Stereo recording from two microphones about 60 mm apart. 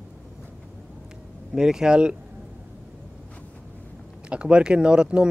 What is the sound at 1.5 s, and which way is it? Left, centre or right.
Speech, centre.